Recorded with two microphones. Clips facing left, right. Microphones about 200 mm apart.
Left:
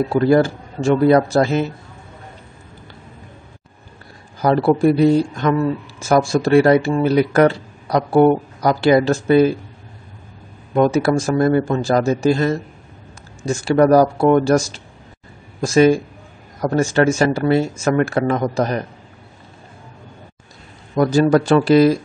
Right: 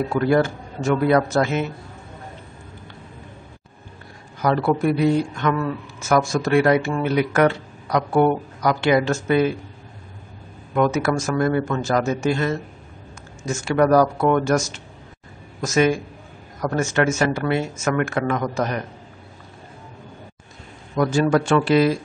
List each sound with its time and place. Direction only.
0.1 s speech: 30° left (ahead or behind)
4.4 s speech: 30° left (ahead or behind)
10.7 s speech: 30° left (ahead or behind)
20.9 s speech: 35° left (ahead or behind)